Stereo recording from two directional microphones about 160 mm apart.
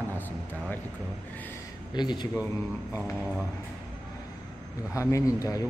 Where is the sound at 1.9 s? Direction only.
25° left (ahead or behind).